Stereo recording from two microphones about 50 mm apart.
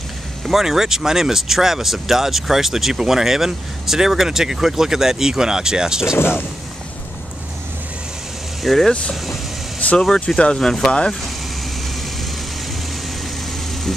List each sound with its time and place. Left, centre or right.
0.5 s speech: centre
8.6 s speech: centre
9.8 s speech: left
10.3 s speech: centre
10.9 s speech: centre